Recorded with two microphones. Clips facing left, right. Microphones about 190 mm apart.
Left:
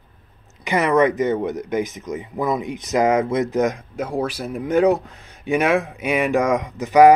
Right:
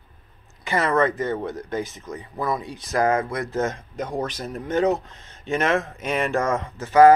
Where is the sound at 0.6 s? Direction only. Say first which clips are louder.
Left 4 dB; 15° left (ahead or behind).